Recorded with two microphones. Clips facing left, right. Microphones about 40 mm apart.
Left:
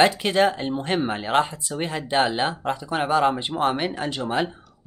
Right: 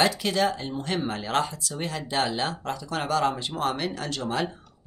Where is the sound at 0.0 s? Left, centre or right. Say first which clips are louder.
Left 5 dB; left.